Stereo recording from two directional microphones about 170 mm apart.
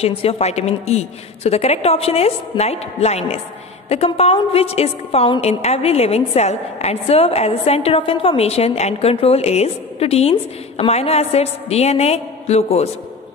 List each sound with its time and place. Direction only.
0.0 s a woman's voice: 35° left (ahead or behind)